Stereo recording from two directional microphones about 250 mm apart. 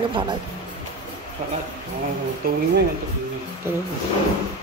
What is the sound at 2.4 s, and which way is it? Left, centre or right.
Speech, right.